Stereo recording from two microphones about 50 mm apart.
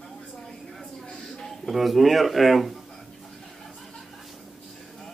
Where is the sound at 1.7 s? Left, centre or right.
Centre.